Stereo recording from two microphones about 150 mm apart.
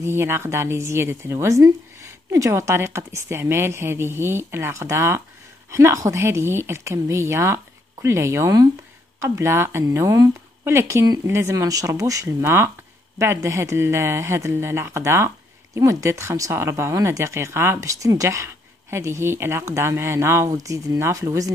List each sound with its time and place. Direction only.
0.0 s a woman's voice: 15° right (ahead or behind)